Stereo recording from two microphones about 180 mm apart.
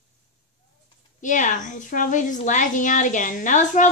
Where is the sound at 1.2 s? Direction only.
45° left (ahead or behind).